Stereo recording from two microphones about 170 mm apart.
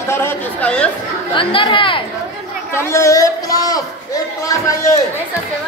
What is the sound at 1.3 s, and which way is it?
Speech, 30° left (ahead or behind).